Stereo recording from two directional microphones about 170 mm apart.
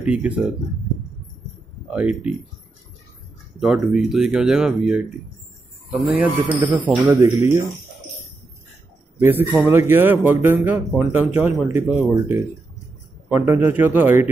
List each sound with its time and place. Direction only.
0.0 s speech: 5° right (ahead or behind)
1.9 s speech: 5° right (ahead or behind)
3.5 s speech: 5° right (ahead or behind)
9.2 s speech: 15° right (ahead or behind)